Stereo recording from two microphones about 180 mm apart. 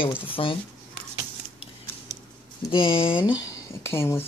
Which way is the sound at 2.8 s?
30° left (ahead or behind).